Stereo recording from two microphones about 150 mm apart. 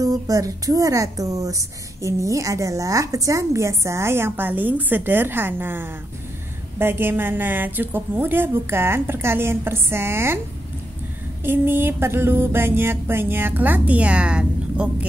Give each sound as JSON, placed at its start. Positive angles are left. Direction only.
{"t": 0.0, "sound": "a woman's voice", "side_deg": -25}
{"t": 6.8, "sound": "music", "side_deg": -15}
{"t": 11.4, "sound": "music", "side_deg": -15}